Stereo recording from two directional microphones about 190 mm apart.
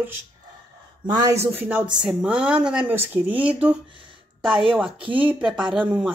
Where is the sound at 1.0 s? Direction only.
20° right (ahead or behind).